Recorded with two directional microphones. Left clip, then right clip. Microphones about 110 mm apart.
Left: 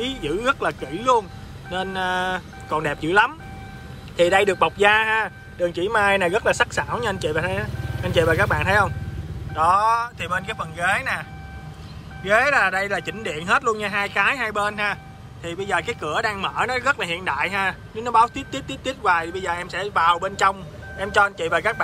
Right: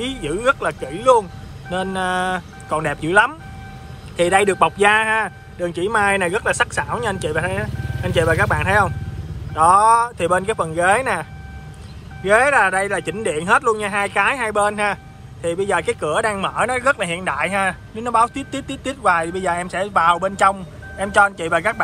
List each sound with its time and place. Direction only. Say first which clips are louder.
0.2 s speech: right 4 dB; 20° left (ahead or behind)
9.6 s speech: right 5 dB; centre (ahead or behind)
12.2 s speech: right 4 dB; 15° left (ahead or behind)